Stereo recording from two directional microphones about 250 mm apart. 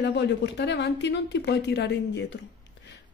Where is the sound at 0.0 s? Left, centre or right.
Left.